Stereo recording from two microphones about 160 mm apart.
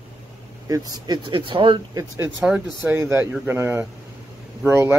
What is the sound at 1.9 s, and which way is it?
Speech, 15° right (ahead or behind).